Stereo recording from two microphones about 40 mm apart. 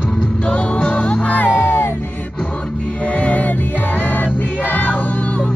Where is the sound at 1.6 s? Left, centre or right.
Left.